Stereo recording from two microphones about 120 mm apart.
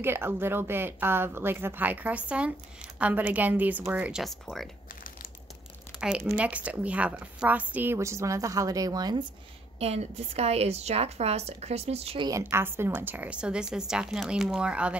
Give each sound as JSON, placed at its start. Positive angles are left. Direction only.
{"t": 0.0, "sound": "a woman's voice", "side_deg": -20}
{"t": 4.2, "sound": "speech", "side_deg": 0}
{"t": 5.9, "sound": "a sound", "side_deg": -10}
{"t": 6.3, "sound": "a woman's voice", "side_deg": -10}
{"t": 9.8, "sound": "a woman's voice", "side_deg": -60}
{"t": 12.2, "sound": "a woman's voice", "side_deg": -30}